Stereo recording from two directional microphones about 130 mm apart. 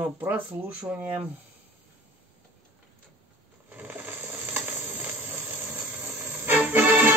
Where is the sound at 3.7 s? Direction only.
15° right (ahead or behind).